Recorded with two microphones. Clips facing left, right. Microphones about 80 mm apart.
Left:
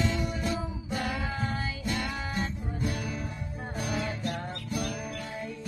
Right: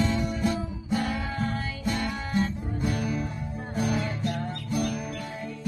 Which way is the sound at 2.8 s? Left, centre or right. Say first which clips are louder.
Right 4 dB; right.